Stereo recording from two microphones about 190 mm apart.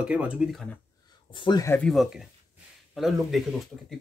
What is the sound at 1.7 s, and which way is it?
Speech, 5° left (ahead or behind).